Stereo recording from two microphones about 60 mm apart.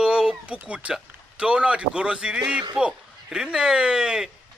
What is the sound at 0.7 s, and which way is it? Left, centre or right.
Speech, centre.